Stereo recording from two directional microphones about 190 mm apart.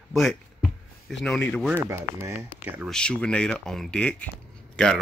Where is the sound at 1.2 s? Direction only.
5° left (ahead or behind).